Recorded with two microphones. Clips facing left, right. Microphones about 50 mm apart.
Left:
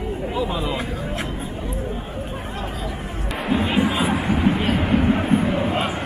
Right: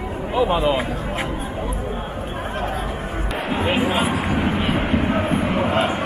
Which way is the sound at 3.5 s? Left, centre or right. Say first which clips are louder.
Left 1 dB; right.